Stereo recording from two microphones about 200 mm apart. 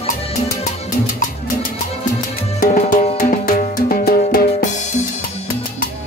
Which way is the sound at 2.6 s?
40° left (ahead or behind).